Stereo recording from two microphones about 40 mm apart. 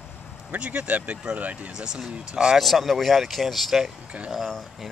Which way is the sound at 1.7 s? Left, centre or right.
Centre.